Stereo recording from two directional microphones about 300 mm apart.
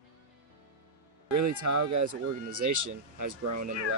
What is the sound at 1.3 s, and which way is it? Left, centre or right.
Speech, right.